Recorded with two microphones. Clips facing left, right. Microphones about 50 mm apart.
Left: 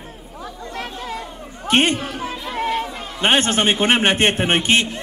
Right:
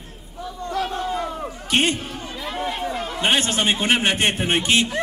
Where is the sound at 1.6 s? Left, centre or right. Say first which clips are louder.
Left 4 dB; left.